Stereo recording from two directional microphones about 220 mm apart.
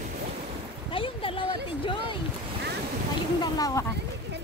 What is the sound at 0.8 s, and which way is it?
Speech, 25° left (ahead or behind).